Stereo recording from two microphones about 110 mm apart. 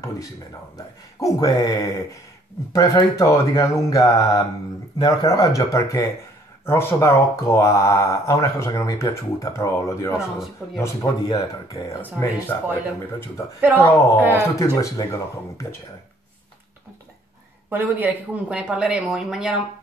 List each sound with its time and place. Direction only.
1.2 s speech: 35° left (ahead or behind)
11.2 s speech: 35° left (ahead or behind)
12.0 s speech: 15° left (ahead or behind)
13.6 s speech: 20° right (ahead or behind)
14.6 s speech: 30° left (ahead or behind)
17.6 s speech: 15° right (ahead or behind)